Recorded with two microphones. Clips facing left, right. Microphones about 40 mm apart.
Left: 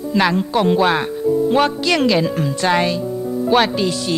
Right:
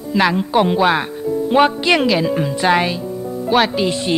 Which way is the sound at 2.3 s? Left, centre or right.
Centre.